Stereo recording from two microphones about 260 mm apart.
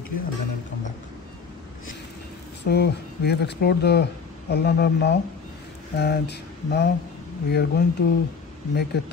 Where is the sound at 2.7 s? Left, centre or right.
Left.